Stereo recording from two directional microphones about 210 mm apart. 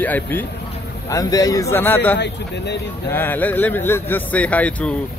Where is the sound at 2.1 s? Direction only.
55° left (ahead or behind).